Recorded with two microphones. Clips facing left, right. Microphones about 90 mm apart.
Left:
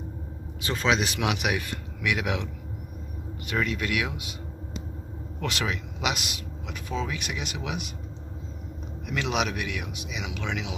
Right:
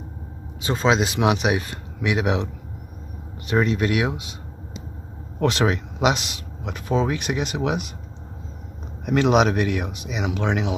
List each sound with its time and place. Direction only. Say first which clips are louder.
0.6 s a man's voice: right 5 dB; 25° right (ahead or behind)
3.4 s speech: right 8 dB; 30° right (ahead or behind)
5.4 s speech: right 10 dB; 35° right (ahead or behind)
9.0 s speech: right 10 dB; 40° right (ahead or behind)